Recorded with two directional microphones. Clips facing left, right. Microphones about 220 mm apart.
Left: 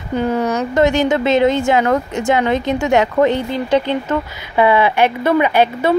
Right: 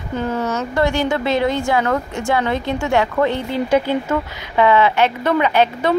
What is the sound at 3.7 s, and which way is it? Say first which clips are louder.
Speech: left 1 dB; 10° right (ahead or behind).